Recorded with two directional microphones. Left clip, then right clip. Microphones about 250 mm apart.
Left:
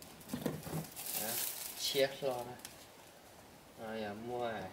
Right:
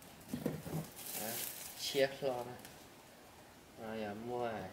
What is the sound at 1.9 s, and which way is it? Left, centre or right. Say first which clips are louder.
Speech: left 1 dB; centre.